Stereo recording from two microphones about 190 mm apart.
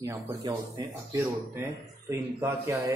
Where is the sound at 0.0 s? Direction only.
15° right (ahead or behind).